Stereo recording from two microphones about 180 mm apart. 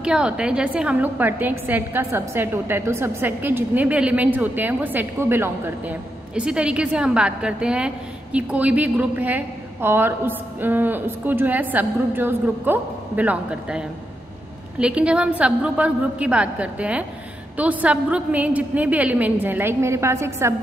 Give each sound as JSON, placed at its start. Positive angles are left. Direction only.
{"t": 0.0, "sound": "a woman's voice", "side_deg": -5}